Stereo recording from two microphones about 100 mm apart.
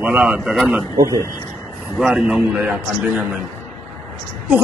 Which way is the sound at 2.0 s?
5° right (ahead or behind).